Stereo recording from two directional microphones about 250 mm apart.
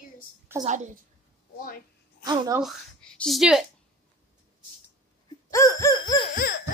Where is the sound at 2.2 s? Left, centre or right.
Centre.